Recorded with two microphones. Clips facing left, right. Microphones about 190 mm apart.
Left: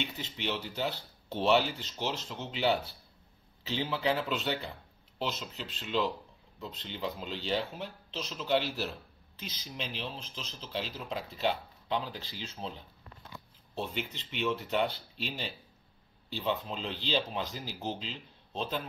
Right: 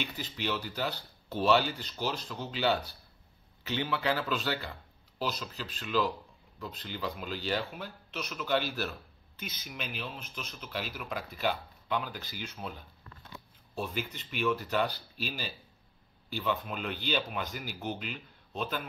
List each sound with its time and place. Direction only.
0.0 s speech: 25° left (ahead or behind)